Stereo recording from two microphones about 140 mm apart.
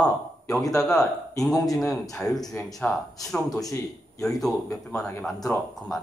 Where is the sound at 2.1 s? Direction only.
5° left (ahead or behind).